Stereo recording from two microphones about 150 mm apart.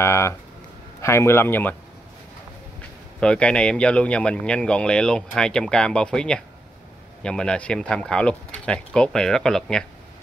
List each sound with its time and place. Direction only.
0.0 s a sound: 15° left (ahead or behind)
1.0 s a man's voice: 15° left (ahead or behind)
3.2 s a man's voice: 5° left (ahead or behind)